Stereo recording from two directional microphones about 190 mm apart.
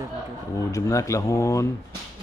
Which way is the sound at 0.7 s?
15° left (ahead or behind).